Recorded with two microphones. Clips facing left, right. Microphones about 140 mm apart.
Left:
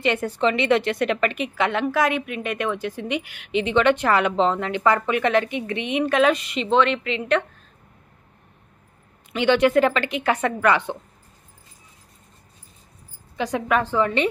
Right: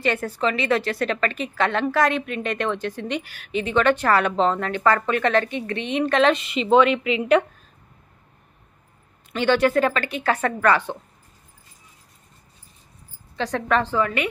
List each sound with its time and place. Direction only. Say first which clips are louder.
0.0 s a woman's voice: left 2 dB; 20° left (ahead or behind); by 7.4 s 10° right (ahead or behind)
9.3 s a woman's voice: left 1 dB; 15° left (ahead or behind)
13.4 s a woman's voice: even; 10° left (ahead or behind)
13.9 s a woman's voice: left 2 dB; 25° left (ahead or behind)